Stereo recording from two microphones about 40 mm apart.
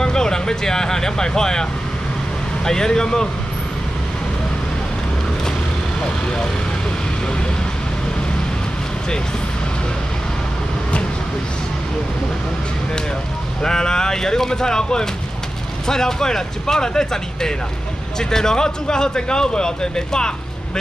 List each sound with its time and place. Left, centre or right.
0.0 s speech: centre
13.6 s speech: centre